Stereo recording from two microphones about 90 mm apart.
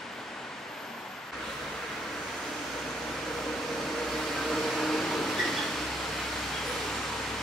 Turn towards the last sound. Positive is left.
turn(degrees=5)  # may be behind; listen again after turning